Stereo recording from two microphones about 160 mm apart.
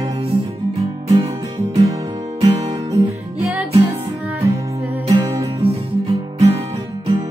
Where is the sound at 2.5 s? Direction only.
40° right (ahead or behind).